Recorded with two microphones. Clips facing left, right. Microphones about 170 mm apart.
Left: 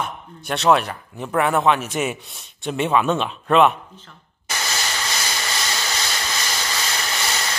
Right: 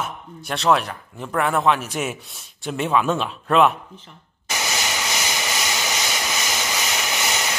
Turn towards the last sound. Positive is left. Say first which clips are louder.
# right 1 dB
turn(degrees=-15)  # may be behind; listen again after turning